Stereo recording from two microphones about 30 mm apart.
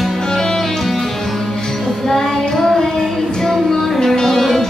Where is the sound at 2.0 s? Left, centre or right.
Centre.